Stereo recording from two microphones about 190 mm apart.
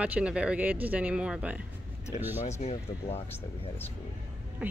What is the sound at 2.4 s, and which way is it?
Speech, 35° left (ahead or behind).